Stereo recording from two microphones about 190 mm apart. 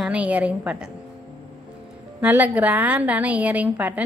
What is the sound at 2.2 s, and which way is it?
A woman's voice, 10° right (ahead or behind).